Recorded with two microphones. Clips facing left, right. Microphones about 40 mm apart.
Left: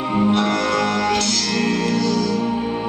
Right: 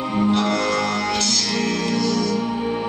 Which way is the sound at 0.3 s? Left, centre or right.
Left.